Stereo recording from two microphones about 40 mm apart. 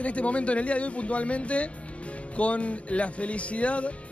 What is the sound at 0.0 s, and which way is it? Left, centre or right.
Speech, left.